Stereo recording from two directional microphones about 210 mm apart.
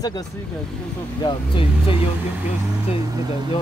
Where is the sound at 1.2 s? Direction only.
25° left (ahead or behind).